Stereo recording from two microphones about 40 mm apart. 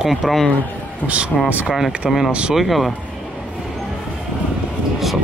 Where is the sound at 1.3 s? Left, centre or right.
Centre.